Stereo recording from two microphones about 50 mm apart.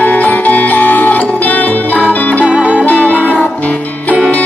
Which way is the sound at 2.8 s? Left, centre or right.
Left.